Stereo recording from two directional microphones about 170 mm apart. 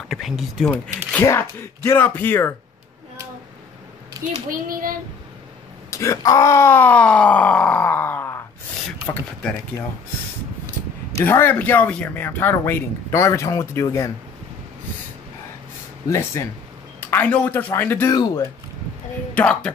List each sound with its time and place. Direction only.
0.1 s speech: centre (ahead or behind)
4.5 s child singing: 55° right (ahead or behind)
5.9 s speech: 20° left (ahead or behind)
11.2 s speech: 15° left (ahead or behind)
16.1 s a man's voice: 15° left (ahead or behind)
18.1 s speech: 20° left (ahead or behind)
19.3 s speech: 5° left (ahead or behind)